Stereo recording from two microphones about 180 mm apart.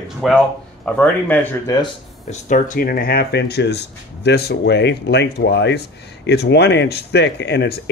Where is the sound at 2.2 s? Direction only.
45° left (ahead or behind).